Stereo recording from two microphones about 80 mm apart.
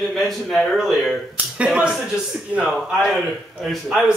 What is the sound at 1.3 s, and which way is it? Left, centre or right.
Speech, centre.